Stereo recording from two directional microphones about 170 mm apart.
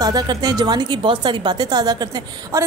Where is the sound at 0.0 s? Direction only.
25° right (ahead or behind).